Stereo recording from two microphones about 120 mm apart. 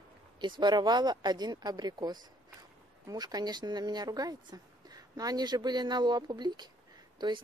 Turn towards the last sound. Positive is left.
turn(degrees=-40)  # may be behind; listen again after turning